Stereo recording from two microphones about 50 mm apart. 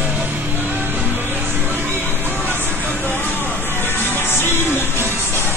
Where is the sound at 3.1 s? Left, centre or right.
Left.